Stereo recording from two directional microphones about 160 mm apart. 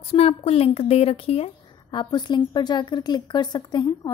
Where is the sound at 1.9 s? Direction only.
25° left (ahead or behind).